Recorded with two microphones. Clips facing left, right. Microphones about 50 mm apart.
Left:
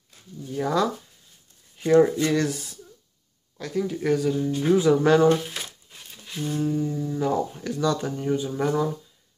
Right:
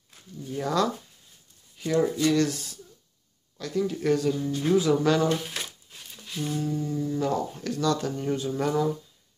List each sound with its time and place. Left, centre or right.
0.6 s speech: centre
1.8 s speech: left
2.2 s speech: left
2.5 s a sound: centre
3.7 s speech: centre
4.7 s speech: left
5.9 s a sound: centre
6.5 s speech: left
8.2 s speech: centre